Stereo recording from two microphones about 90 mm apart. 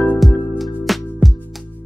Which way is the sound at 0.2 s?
Centre (ahead or behind).